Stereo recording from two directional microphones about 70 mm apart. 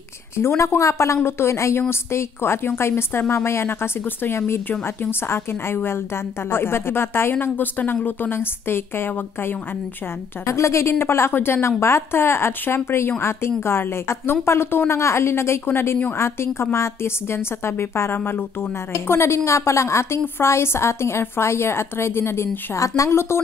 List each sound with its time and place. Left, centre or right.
0.4 s a woman's voice: left
10.4 s a woman's voice: left